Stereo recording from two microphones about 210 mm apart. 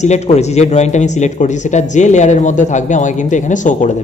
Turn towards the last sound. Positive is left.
turn(degrees=35)  # may be behind; listen again after turning